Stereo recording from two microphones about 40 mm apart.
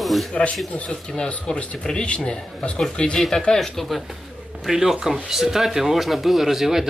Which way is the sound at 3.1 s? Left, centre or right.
Centre.